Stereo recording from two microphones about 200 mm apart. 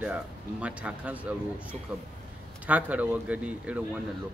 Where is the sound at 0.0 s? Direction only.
5° right (ahead or behind).